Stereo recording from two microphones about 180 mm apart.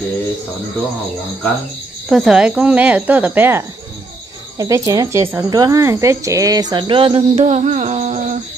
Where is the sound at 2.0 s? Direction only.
5° right (ahead or behind); by 8.2 s 40° right (ahead or behind).